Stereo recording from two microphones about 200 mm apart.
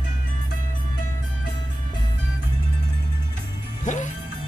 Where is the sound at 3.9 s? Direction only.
40° left (ahead or behind).